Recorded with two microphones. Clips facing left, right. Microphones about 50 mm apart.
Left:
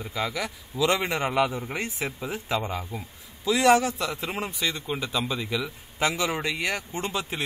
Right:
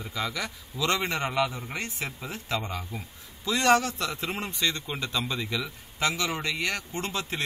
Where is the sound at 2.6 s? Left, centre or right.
Centre.